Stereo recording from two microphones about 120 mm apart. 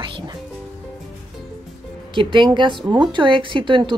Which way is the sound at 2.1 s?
40° right (ahead or behind).